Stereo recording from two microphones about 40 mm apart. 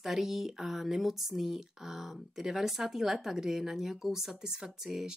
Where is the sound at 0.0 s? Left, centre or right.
Centre.